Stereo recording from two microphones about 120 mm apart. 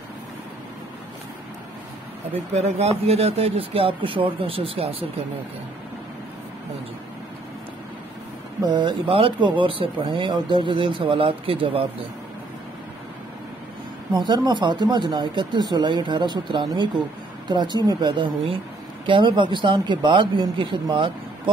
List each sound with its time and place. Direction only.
2.5 s speech: 65° right (ahead or behind)
8.6 s speech: 40° right (ahead or behind)
14.1 s speech: 35° right (ahead or behind)